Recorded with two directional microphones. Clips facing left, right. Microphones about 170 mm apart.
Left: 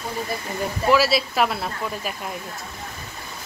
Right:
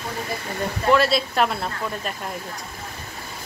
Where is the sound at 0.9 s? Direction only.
5° left (ahead or behind).